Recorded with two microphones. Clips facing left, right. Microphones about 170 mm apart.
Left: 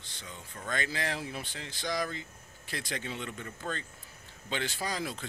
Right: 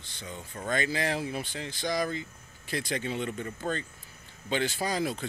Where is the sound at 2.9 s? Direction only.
5° right (ahead or behind).